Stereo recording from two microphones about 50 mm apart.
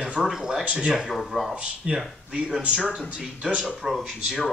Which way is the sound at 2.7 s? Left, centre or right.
Centre.